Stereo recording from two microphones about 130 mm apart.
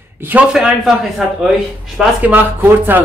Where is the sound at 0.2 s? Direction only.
10° right (ahead or behind).